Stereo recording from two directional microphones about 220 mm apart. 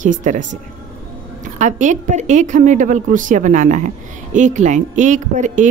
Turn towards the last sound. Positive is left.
turn(degrees=-35)  # may be behind; listen again after turning